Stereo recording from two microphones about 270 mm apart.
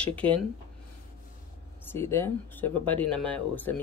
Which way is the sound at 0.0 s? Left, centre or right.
Centre.